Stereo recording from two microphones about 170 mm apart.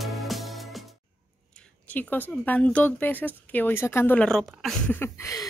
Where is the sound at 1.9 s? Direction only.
10° left (ahead or behind).